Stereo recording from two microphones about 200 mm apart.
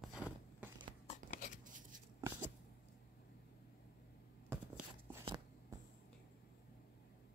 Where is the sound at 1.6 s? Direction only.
40° right (ahead or behind).